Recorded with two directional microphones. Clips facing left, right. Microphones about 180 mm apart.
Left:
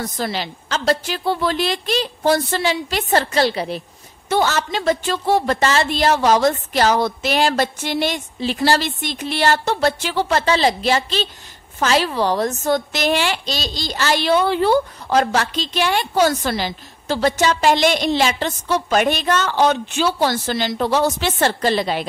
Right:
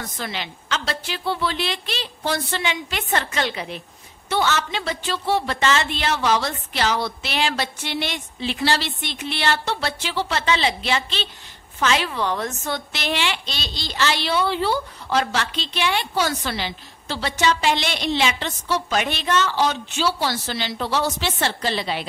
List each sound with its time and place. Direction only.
0.0 s a woman's voice: 35° left (ahead or behind)